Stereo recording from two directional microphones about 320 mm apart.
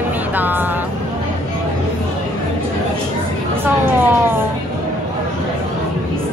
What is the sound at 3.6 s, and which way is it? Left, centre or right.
Vehicle, centre.